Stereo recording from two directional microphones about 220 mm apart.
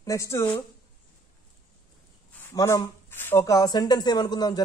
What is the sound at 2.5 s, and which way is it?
Speech, 15° left (ahead or behind).